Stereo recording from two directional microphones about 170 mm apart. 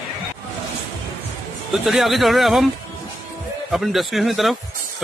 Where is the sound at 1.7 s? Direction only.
Centre (ahead or behind).